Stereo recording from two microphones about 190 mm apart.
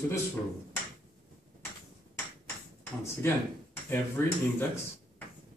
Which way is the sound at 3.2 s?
10° left (ahead or behind).